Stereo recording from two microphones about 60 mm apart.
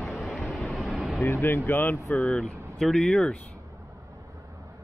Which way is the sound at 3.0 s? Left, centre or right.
Centre.